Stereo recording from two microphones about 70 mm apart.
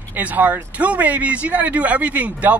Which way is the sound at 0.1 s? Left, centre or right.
Right.